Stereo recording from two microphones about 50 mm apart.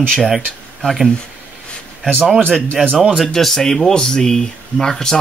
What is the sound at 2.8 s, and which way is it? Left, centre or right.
Speech, centre.